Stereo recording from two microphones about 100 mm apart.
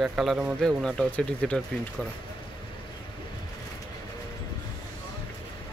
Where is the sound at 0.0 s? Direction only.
Centre (ahead or behind).